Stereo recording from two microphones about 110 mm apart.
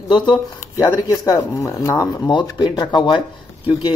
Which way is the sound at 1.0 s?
35° left (ahead or behind).